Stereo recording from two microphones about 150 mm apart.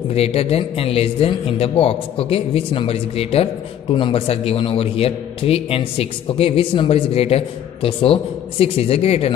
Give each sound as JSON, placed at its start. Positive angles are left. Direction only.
{"t": 0.1, "sound": "a man's voice", "side_deg": 40}